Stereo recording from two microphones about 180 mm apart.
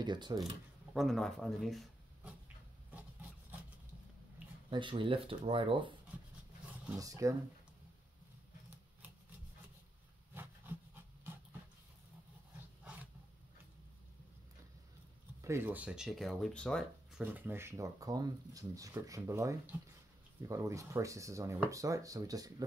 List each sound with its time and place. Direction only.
0.0 s speech: 25° right (ahead or behind)
0.9 s speech: centre (ahead or behind)
4.6 s speech: 25° right (ahead or behind)
7.0 s speech: 20° right (ahead or behind)
10.3 s a sound: 10° right (ahead or behind)
15.4 s speech: 15° right (ahead or behind); by 17.2 s 5° left (ahead or behind)
17.2 s speech: 10° right (ahead or behind)